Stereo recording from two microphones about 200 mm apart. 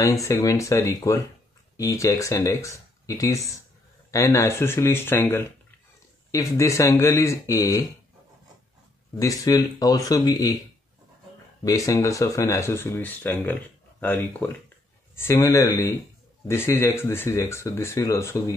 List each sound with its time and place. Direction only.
0.0 s speech: 15° left (ahead or behind)
9.2 s speech: 15° left (ahead or behind)
11.6 s speech: 15° left (ahead or behind)